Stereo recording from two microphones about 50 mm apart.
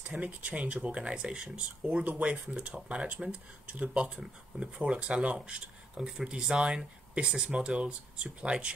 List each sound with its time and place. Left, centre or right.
0.1 s speech: right
2.0 s speech: right
2.4 s speech: right
5.9 s speech: centre